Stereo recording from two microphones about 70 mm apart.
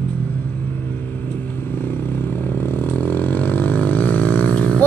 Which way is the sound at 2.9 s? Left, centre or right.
Left.